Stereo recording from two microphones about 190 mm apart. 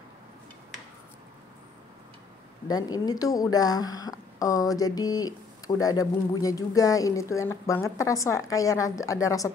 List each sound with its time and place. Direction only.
2.7 s speech: 20° left (ahead or behind)